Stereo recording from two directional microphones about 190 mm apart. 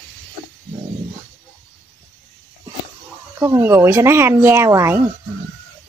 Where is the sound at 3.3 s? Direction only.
15° right (ahead or behind).